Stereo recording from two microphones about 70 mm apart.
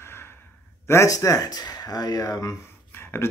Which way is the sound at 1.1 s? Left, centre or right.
Left.